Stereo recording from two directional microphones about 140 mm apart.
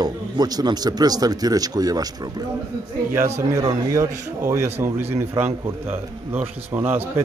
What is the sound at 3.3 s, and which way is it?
A man's voice, 20° right (ahead or behind).